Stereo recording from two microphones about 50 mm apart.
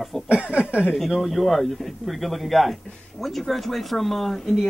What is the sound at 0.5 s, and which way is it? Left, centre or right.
Speech, right.